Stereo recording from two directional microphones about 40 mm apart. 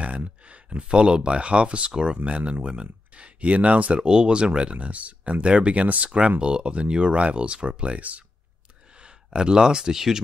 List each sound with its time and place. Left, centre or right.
0.0 s speech: right
3.3 s speech: right
4.0 s speech: right
9.0 s speech: right